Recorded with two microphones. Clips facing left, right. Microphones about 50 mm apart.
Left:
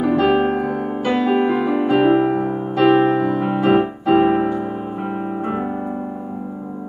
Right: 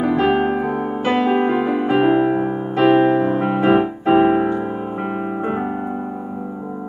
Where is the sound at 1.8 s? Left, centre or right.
Centre.